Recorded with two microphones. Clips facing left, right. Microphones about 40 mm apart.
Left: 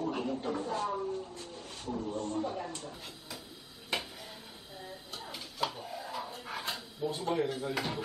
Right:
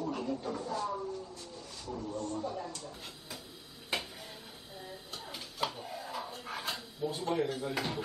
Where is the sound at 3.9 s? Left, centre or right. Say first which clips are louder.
Left 1 dB; centre.